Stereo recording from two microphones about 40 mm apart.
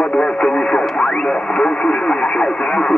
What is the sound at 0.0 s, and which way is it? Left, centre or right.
Radio, left.